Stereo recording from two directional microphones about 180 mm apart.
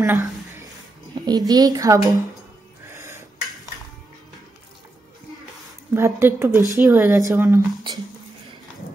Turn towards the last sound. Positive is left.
turn(degrees=-20)  # may be behind; listen again after turning